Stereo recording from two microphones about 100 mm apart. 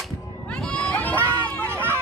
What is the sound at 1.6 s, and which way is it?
Hubbub, 20° right (ahead or behind).